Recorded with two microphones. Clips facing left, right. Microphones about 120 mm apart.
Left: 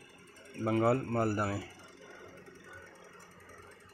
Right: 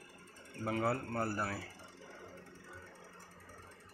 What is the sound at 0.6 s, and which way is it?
Speech, 30° left (ahead or behind).